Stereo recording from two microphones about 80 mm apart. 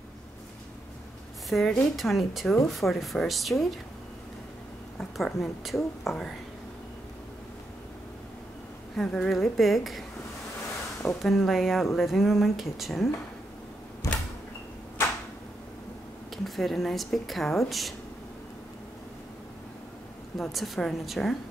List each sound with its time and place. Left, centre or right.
1.5 s a woman's voice: centre
4.9 s a woman's voice: centre
8.9 s speech: centre
11.2 s speech: centre
14.0 s a sound: left
16.4 s speech: centre
20.3 s speech: centre